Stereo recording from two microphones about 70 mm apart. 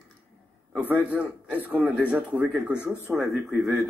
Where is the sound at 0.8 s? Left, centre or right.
Right.